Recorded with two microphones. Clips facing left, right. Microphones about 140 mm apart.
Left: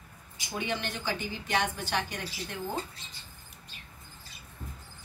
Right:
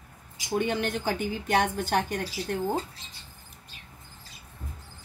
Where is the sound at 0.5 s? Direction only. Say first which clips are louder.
Right 7 dB; 50° right (ahead or behind).